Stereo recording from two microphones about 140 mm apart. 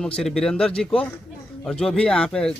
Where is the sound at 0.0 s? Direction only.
5° left (ahead or behind).